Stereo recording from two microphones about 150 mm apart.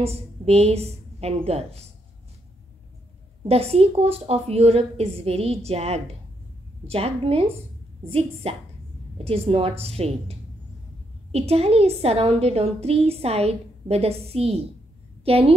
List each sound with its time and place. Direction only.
0.0 s a woman's voice: 40° right (ahead or behind)
3.4 s a woman's voice: 40° right (ahead or behind)
11.3 s a woman's voice: 45° right (ahead or behind)